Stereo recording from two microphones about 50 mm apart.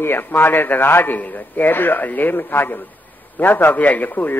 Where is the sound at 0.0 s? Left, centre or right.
Left.